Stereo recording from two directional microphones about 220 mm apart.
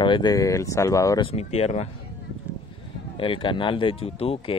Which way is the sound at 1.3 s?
30° left (ahead or behind).